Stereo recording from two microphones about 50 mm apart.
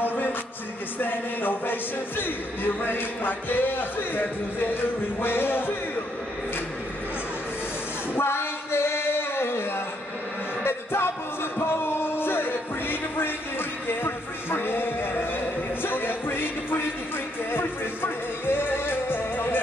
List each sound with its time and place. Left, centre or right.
0.0 s music: left
0.9 s speech: left
8.1 s a sound: left
10.6 s music: left